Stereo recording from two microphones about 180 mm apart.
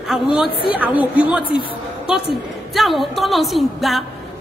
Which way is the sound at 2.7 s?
Centre (ahead or behind).